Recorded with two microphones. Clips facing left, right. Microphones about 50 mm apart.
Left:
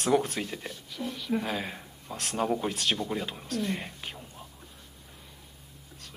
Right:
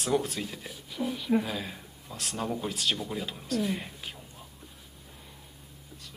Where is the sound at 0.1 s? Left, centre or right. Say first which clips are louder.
Left 2 dB; left.